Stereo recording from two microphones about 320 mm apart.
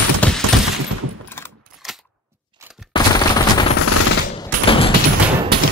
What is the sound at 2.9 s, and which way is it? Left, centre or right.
Machine gun, centre.